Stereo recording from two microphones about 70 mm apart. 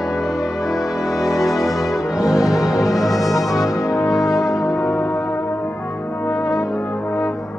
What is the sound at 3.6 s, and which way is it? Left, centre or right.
Brass instrument, left.